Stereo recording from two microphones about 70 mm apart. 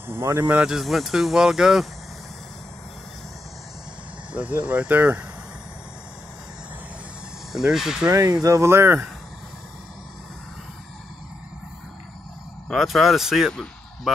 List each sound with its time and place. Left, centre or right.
0.1 s speech: right
0.7 s speech: centre
4.3 s speech: centre
7.5 s speech: centre
8.1 s speech: right
8.6 s speech: right
12.6 s speech: centre